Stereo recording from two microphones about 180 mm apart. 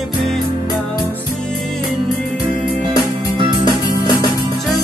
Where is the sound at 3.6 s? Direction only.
20° left (ahead or behind).